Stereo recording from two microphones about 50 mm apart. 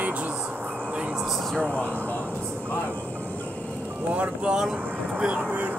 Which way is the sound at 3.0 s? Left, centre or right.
Left.